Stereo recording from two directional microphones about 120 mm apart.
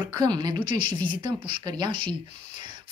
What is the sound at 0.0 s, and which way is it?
Speech, 35° right (ahead or behind).